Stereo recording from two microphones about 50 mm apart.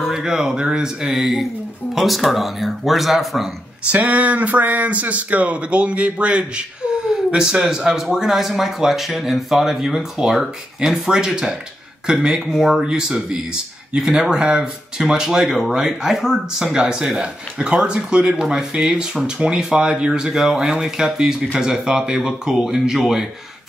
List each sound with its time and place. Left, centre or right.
0.1 s speech: centre
1.2 s speech: centre
3.9 s speech: right
6.9 s speech: centre
12.8 s speech: centre